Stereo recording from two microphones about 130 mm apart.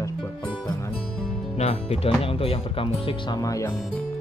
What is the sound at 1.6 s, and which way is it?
Speech, 50° left (ahead or behind).